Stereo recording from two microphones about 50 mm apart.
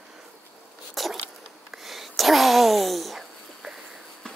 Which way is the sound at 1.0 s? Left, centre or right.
Centre.